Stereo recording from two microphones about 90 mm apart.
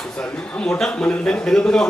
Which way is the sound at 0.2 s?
10° left (ahead or behind).